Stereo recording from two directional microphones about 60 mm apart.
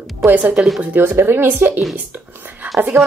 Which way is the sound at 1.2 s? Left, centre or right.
Right.